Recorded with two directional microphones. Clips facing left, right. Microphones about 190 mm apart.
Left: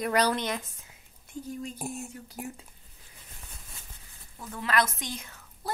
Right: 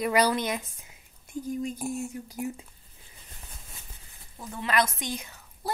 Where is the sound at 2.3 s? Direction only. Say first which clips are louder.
Right 6 dB; 15° right (ahead or behind).